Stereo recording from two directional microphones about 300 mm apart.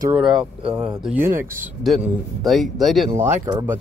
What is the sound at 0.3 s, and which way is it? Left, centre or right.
Speech, centre.